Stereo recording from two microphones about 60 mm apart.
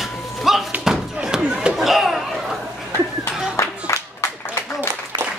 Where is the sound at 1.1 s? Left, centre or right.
Centre.